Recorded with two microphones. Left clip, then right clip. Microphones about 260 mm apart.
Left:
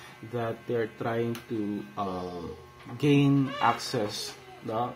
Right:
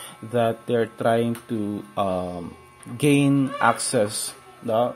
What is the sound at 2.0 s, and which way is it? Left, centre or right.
Speech, right.